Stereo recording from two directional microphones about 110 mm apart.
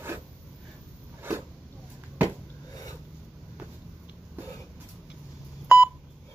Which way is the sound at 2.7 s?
35° left (ahead or behind).